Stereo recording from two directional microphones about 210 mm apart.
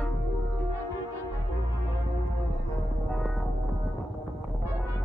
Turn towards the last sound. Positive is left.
turn(degrees=0)  # may be behind; listen again after turning